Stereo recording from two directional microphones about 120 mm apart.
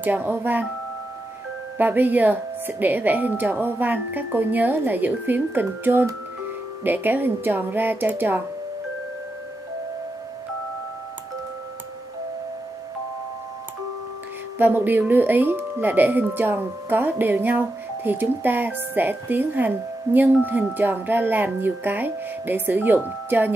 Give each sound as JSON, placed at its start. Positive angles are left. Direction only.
{"t": 0.0, "sound": "speech", "side_deg": -15}
{"t": 1.8, "sound": "speech", "side_deg": -15}
{"t": 14.6, "sound": "speech", "side_deg": -15}